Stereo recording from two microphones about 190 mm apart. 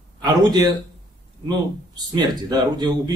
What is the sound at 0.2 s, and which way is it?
Speech, 20° right (ahead or behind).